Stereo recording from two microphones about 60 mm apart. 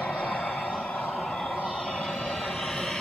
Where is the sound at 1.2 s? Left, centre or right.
Centre.